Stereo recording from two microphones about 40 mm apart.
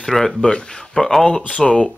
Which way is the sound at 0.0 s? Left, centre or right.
Centre.